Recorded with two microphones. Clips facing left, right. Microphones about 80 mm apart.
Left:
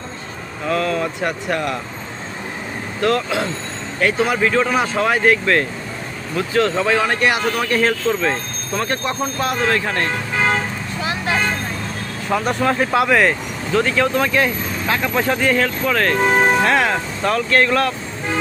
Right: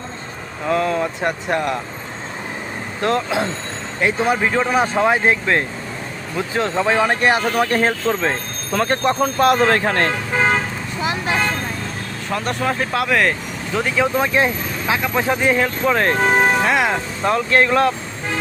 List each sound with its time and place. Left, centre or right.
0.7 s speech: right
3.0 s speech: right
8.7 s speech: right
9.6 s speech: right
11.0 s vehicle: right
12.3 s speech: centre
15.0 s speech: centre; by 16.2 s right
16.3 s speech: centre; by 17.9 s right